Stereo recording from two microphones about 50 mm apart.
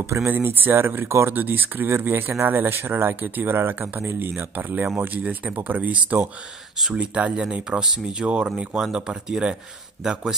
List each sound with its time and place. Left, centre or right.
0.0 s speech: right
1.3 s speech: right
3.5 s speech: right; by 9.6 s centre